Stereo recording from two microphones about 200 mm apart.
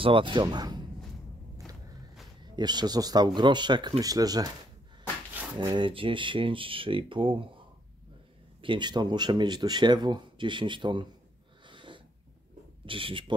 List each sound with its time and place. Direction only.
0.0 s speech: 25° right (ahead or behind)
2.4 s speech: 20° right (ahead or behind)
5.6 s speech: 25° right (ahead or behind)
8.5 s speech: 25° right (ahead or behind)
11.6 s snort: 25° right (ahead or behind)
12.8 s speech: 25° right (ahead or behind)